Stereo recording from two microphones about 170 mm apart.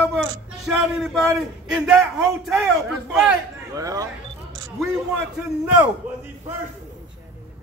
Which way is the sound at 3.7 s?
20° right (ahead or behind).